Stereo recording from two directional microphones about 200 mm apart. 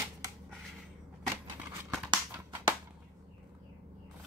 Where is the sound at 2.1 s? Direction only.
10° right (ahead or behind).